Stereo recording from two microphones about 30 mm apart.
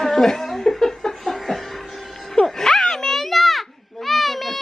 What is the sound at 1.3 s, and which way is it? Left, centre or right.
Laughter, centre.